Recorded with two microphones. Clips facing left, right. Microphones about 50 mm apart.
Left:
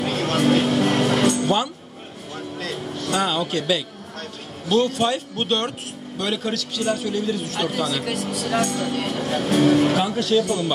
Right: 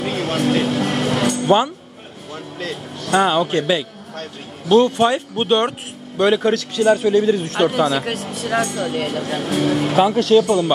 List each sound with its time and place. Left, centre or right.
0.0 s vehicle: centre
0.9 s music: centre
1.4 s music: right
2.6 s speech: right
6.8 s speech: right
7.3 s speech: right
9.3 s speech: centre
9.9 s speech: right